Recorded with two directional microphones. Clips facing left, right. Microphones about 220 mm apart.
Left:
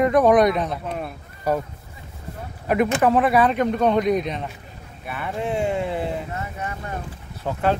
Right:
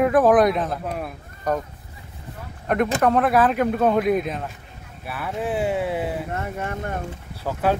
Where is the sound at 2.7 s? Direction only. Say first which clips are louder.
Left 1 dB; 5° left (ahead or behind).